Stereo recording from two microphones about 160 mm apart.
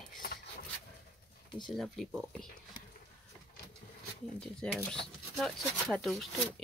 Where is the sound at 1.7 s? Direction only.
Centre (ahead or behind).